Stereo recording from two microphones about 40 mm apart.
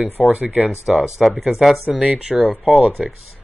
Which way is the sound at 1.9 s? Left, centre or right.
Right.